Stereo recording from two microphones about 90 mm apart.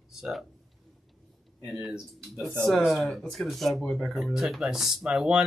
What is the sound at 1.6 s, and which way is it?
Speech, 5° right (ahead or behind).